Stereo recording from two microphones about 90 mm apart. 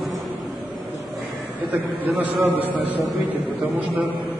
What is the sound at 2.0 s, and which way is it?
Speech, 20° right (ahead or behind).